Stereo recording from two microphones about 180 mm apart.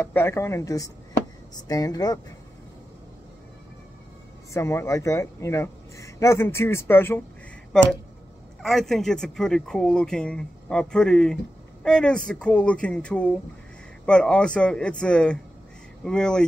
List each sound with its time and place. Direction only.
0.0 s a man's voice: 15° left (ahead or behind)
4.6 s a man's voice: 15° left (ahead or behind)
8.6 s a man's voice: centre (ahead or behind)